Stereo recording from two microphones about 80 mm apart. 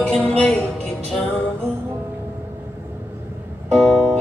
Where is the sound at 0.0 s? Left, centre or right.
Centre.